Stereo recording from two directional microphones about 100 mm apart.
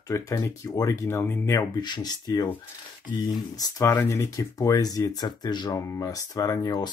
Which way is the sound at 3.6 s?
35° left (ahead or behind).